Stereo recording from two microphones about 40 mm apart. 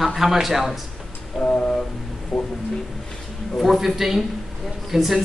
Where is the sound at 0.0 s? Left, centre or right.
Centre.